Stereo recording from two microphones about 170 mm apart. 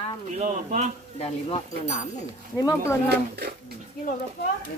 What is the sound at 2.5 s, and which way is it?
Speech, 20° left (ahead or behind).